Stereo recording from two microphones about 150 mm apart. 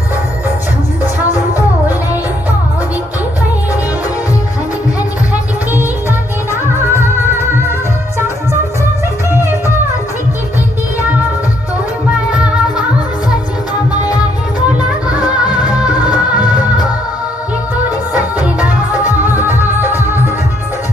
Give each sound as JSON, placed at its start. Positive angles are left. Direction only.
{"t": 6.8, "sound": "music", "side_deg": -15}
{"t": 12.3, "sound": "music", "side_deg": -5}
{"t": 15.2, "sound": "music", "side_deg": -10}
{"t": 18.1, "sound": "music", "side_deg": -10}